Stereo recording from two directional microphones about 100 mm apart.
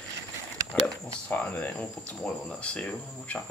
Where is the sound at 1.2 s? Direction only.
15° left (ahead or behind).